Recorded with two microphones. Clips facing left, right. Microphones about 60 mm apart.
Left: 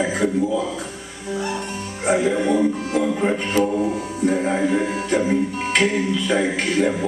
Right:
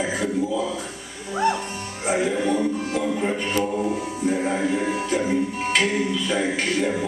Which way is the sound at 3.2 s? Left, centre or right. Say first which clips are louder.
Left 4 dB; centre.